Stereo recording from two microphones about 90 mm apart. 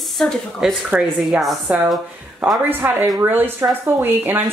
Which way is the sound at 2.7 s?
25° right (ahead or behind).